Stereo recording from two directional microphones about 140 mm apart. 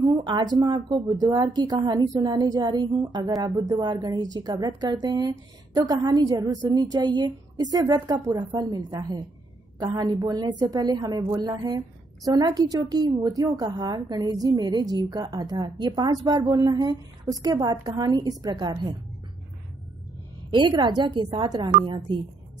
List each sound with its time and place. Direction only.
0.0 s speech: 35° right (ahead or behind)
20.5 s a woman's voice: 35° right (ahead or behind)